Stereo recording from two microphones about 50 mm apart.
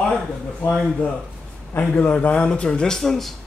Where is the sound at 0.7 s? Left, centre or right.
Centre.